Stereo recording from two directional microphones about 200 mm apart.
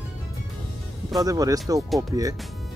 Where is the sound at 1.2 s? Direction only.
15° right (ahead or behind).